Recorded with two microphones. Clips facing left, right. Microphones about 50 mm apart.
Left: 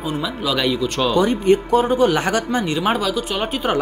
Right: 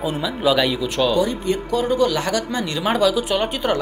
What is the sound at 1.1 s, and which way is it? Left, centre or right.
Speech, left.